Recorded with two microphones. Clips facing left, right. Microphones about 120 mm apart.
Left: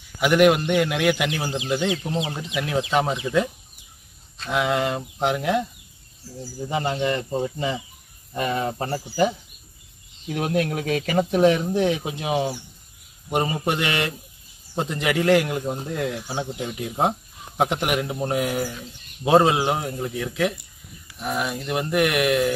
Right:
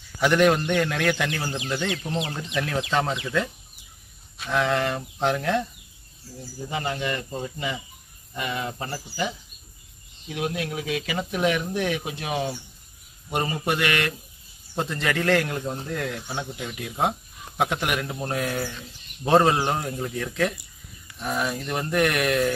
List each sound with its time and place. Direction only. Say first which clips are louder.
0.2 s speech: left 2 dB; 10° left (ahead or behind)
4.5 s speech: left 1 dB; 15° left (ahead or behind)
6.7 s speech: left 5 dB; 25° left (ahead or behind)
8.3 s speech: left 5 dB; 40° left (ahead or behind)
10.3 s speech: left 5 dB; 45° left (ahead or behind); by 16.2 s 20° left (ahead or behind)
16.2 s speech: left 4 dB; 30° left (ahead or behind); by 22.5 s 5° left (ahead or behind)